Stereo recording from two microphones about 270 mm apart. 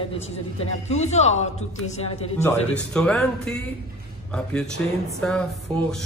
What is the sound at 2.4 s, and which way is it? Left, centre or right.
A man's voice, centre.